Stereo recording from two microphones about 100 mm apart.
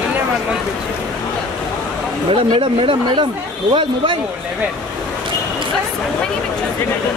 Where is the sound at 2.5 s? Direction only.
65° right (ahead or behind).